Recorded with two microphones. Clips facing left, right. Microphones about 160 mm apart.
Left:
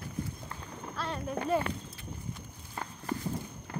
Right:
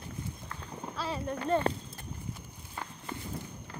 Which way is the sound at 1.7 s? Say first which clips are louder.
Right 6 dB; 35° right (ahead or behind).